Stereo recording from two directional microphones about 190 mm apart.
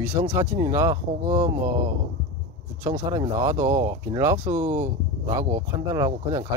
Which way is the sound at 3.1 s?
15° right (ahead or behind).